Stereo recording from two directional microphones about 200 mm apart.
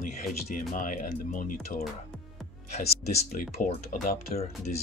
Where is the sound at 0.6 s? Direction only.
40° left (ahead or behind).